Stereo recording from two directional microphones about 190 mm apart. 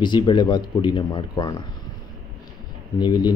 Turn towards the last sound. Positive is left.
turn(degrees=20)  # may be behind; listen again after turning